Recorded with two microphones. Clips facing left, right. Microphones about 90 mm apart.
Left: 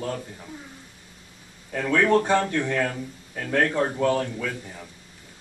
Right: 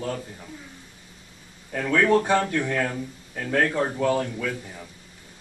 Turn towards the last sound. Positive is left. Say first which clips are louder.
# right 1 dB
turn(degrees=0)  # may be behind; listen again after turning